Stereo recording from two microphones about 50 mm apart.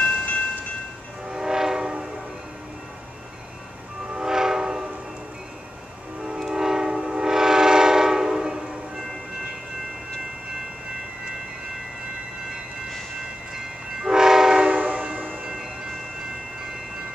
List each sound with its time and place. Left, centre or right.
0.0 s train: left
1.2 s train: centre
4.1 s train: centre
6.2 s train: centre
13.5 s train: centre
14.9 s train: right
15.4 s train: centre